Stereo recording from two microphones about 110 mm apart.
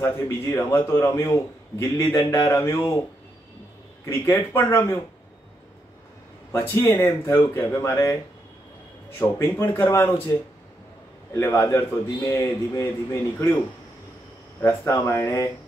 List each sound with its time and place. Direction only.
0.0 s a man's voice: 20° left (ahead or behind)
4.0 s a man's voice: 25° left (ahead or behind)
6.5 s a man's voice: 25° left (ahead or behind)
9.2 s a man's voice: 25° left (ahead or behind)
11.3 s a man's voice: 25° left (ahead or behind)
14.6 s a man's voice: 20° left (ahead or behind)